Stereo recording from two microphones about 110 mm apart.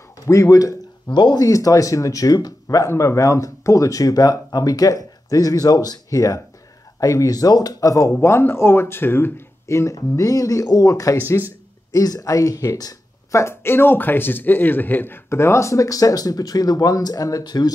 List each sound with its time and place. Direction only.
0.2 s speech: 30° left (ahead or behind)
11.1 s speech: 20° left (ahead or behind)
11.9 s speech: 35° left (ahead or behind)